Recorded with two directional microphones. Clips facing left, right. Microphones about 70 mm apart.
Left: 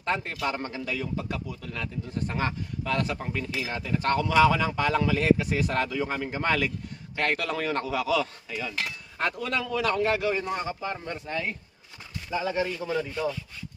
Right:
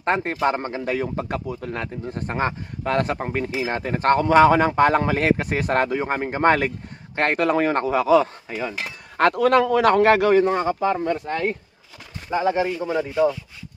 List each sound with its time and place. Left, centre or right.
0.0 s speech: right
9.1 s a man's voice: right
12.3 s speech: right
12.8 s speech: right